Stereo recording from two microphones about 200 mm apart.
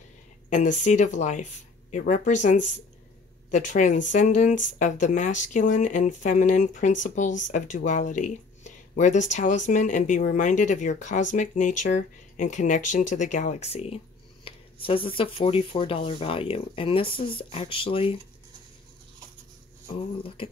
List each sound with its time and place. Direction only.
0.5 s speech: 40° left (ahead or behind)